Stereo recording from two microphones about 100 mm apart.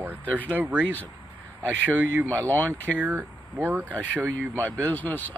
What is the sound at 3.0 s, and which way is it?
Speech, 20° right (ahead or behind).